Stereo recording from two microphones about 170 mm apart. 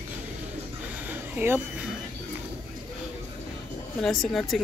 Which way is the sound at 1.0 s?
10° right (ahead or behind).